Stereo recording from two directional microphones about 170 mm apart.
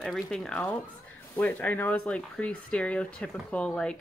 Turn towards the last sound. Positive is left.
turn(degrees=5)  # may be behind; listen again after turning